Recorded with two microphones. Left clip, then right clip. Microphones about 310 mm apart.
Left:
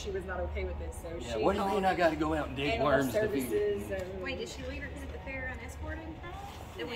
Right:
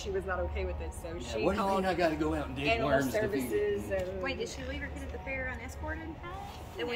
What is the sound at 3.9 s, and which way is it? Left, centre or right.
Speech, centre.